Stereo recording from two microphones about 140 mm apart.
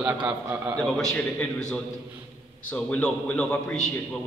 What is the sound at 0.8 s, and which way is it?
Speech, 5° left (ahead or behind).